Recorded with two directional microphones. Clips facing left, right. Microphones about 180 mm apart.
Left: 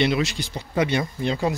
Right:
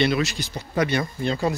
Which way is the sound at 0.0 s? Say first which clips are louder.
Even; 20° left (ahead or behind).